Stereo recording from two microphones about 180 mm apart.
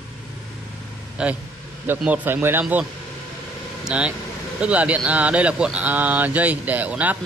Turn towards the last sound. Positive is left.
turn(degrees=-10)  # may be behind; listen again after turning